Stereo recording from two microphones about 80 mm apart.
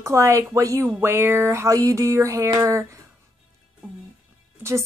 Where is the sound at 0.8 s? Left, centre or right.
Right.